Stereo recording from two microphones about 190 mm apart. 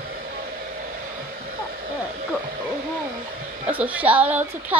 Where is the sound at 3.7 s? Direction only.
10° right (ahead or behind).